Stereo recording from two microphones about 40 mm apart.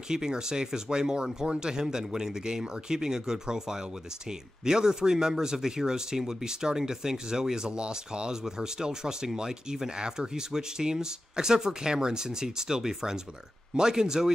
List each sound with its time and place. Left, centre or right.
0.1 s speech: centre